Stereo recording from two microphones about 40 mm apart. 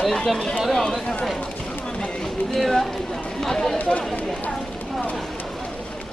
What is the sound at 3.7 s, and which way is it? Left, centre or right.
Speech, left.